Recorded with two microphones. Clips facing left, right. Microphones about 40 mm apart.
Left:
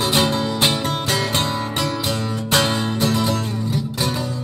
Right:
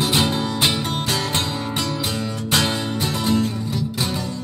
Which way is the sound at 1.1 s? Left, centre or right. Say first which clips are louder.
Left 2 dB; centre.